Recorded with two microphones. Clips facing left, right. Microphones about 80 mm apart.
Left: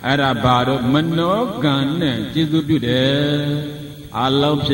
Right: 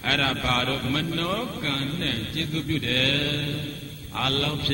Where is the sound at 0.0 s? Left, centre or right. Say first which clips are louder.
Left 10 dB; left.